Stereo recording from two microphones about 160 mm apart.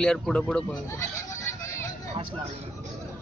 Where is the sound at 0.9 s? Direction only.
15° left (ahead or behind).